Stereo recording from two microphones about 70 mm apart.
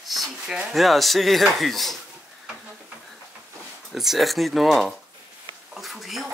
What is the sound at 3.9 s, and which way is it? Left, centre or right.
Speech, centre.